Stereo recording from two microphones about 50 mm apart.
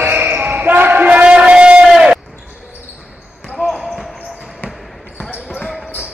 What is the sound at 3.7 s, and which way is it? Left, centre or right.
Basketball bounce, centre.